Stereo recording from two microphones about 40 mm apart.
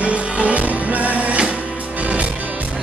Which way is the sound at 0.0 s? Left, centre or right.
Right.